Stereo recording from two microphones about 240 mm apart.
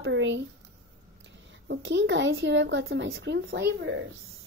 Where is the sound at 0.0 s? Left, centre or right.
Right.